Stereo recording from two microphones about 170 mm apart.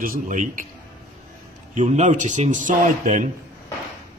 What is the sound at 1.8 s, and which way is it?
A man's voice, 45° right (ahead or behind).